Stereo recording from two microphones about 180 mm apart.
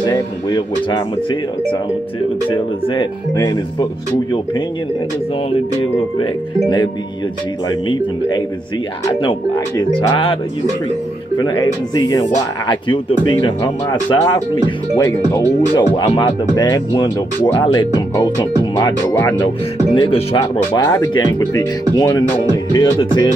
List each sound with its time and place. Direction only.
0.0 s speech: 25° left (ahead or behind)
2.5 s speech: 25° left (ahead or behind)
5.5 s speech: 30° left (ahead or behind)
9.2 s speech: 30° left (ahead or behind)
11.3 s speech: 20° left (ahead or behind)
20.7 s speech: 20° left (ahead or behind)